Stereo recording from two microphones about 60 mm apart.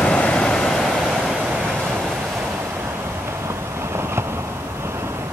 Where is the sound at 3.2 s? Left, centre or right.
Right.